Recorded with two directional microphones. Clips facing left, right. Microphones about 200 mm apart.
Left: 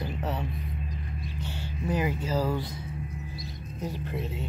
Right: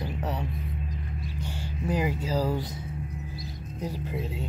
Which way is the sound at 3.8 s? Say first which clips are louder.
Right 1 dB; 10° right (ahead or behind).